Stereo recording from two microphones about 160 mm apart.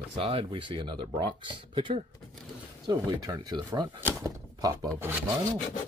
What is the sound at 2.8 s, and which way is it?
Speech, 25° right (ahead or behind).